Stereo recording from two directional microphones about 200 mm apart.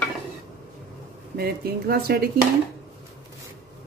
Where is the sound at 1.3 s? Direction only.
50° right (ahead or behind).